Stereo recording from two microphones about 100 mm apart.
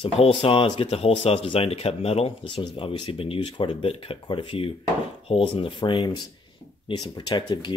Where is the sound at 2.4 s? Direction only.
55° left (ahead or behind).